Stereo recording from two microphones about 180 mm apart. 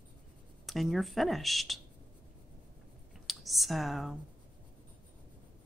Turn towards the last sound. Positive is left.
turn(degrees=0)  # may be behind; listen again after turning